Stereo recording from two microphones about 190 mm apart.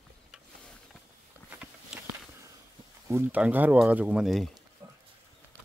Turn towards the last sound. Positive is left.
turn(degrees=-15)  # may be behind; listen again after turning